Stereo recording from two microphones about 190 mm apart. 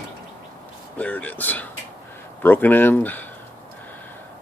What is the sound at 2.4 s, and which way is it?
Speech, 10° left (ahead or behind).